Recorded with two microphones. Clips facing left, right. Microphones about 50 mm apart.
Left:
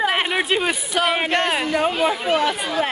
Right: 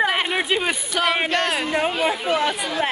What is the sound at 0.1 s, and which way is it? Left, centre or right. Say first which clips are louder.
A woman's voice: left 1 dB; centre.